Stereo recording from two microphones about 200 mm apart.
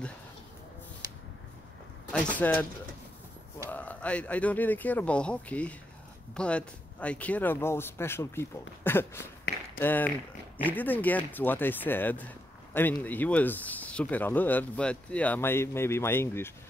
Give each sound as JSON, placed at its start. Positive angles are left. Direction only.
{"t": 2.3, "sound": "speech", "side_deg": 10}
{"t": 3.7, "sound": "speech", "side_deg": 5}